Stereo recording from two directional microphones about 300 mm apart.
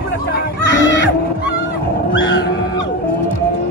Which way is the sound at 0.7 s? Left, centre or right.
Left.